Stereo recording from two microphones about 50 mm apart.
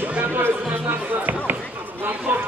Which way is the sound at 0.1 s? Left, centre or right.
Right.